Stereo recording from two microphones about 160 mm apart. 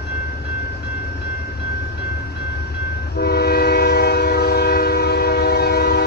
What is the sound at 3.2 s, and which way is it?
Train, 85° left.